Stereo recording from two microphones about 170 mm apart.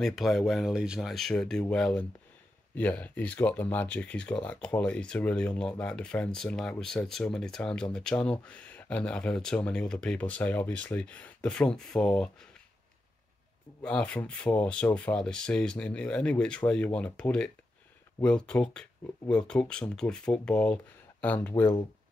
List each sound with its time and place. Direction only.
0.0 s speech: centre (ahead or behind)
13.8 s speech: 5° left (ahead or behind)